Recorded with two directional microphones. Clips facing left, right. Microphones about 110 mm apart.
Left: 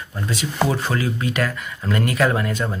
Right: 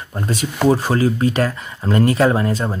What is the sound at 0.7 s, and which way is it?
Speech, 35° right (ahead or behind).